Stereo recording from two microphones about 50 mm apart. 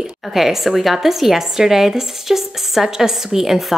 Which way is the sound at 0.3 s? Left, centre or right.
Centre.